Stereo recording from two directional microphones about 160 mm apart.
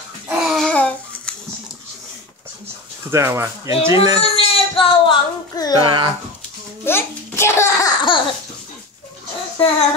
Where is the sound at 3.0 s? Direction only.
15° right (ahead or behind).